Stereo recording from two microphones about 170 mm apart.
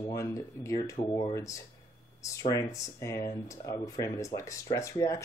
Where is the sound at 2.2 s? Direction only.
20° left (ahead or behind).